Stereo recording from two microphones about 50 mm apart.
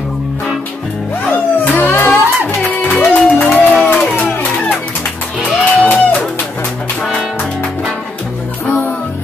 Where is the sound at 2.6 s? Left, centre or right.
Left.